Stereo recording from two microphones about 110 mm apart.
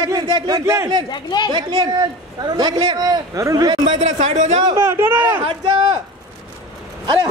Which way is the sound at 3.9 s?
90° right.